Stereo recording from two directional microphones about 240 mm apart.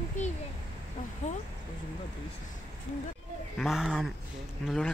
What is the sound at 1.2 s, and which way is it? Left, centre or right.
Speech, left.